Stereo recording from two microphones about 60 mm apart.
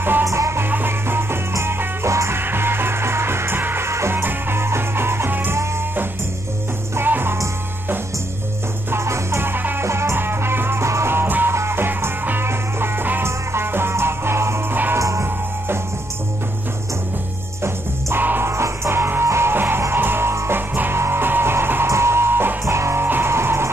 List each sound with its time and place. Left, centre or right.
0.2 s music: right
0.6 s music: right
2.4 s music: right
4.2 s music: right
7.0 s music: right
8.9 s music: right
9.8 s music: right
15.0 s music: right
17.6 s music: right
18.5 s music: right
21.8 s music: right
23.0 s music: right
23.3 s music: right